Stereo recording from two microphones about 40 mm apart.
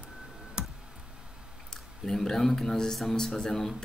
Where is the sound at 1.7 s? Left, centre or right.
Centre.